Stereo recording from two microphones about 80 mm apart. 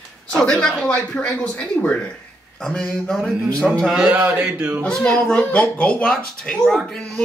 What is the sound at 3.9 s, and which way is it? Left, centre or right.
Speech, centre.